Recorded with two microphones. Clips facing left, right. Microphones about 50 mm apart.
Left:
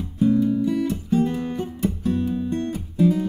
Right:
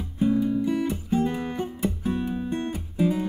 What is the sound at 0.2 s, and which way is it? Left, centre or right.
Music, centre.